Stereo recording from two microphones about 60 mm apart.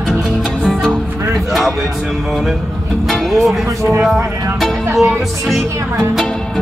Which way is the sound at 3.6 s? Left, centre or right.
Right.